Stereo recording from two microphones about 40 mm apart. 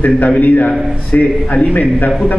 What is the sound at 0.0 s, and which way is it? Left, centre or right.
Speech, left.